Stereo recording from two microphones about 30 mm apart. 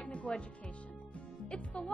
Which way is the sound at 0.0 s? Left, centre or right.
Left.